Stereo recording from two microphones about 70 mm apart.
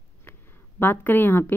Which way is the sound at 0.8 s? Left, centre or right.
Left.